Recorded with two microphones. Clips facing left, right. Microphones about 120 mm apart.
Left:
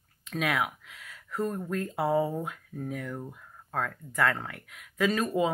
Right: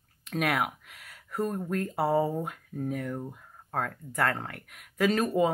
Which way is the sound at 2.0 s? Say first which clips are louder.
Even; 35° right (ahead or behind).